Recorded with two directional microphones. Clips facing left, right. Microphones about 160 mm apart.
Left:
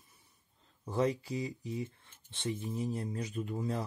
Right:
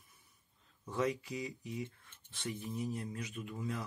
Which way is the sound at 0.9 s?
35° left (ahead or behind).